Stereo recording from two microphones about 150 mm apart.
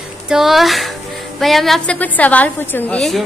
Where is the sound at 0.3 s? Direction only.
Centre (ahead or behind).